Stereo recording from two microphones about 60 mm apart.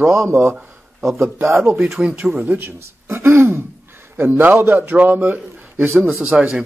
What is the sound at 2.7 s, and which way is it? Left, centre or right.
Speech, right.